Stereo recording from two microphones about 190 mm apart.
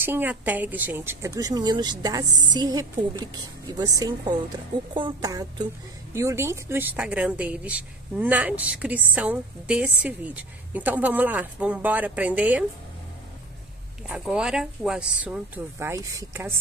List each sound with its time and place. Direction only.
0.0 s a woman's voice: 10° right (ahead or behind)
14.0 s speech: 5° right (ahead or behind)